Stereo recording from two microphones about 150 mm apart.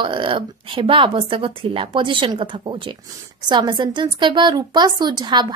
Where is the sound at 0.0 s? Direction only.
35° right (ahead or behind).